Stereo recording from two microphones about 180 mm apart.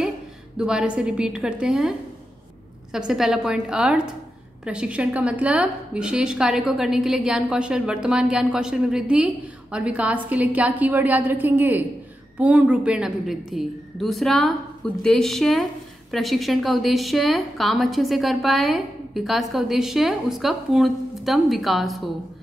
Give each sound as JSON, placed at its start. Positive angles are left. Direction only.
{"t": 0.6, "sound": "a woman's voice", "side_deg": -5}